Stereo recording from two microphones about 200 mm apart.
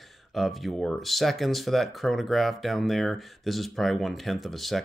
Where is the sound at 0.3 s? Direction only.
Centre (ahead or behind).